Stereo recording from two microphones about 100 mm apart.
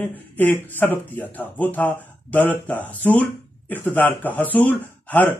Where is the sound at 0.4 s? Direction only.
20° left (ahead or behind).